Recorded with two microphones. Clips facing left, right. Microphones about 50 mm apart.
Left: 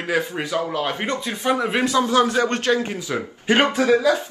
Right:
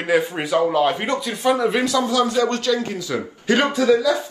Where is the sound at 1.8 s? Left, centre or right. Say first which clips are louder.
Left 1 dB; left.